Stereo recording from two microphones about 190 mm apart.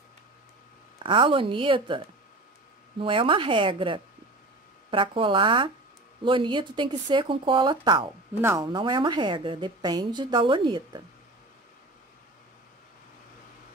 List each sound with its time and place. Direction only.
0.9 s a woman's voice: 25° right (ahead or behind)
3.0 s a woman's voice: 25° right (ahead or behind)
8.4 s a woman's voice: 15° right (ahead or behind)